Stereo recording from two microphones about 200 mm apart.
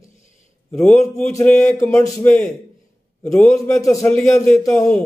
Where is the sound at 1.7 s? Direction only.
15° left (ahead or behind).